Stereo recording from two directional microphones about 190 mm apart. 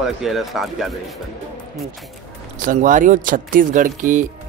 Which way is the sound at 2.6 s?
45° right (ahead or behind).